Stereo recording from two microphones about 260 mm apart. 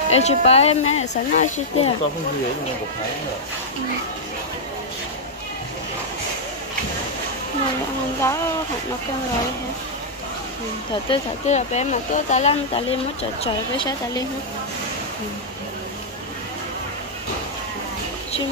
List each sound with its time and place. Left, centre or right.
0.1 s speech: left
8.2 s a woman's voice: centre
11.1 s a woman's voice: left